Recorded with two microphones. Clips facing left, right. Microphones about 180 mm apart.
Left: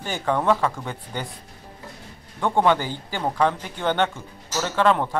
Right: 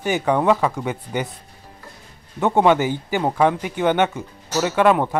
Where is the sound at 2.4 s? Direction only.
20° right (ahead or behind).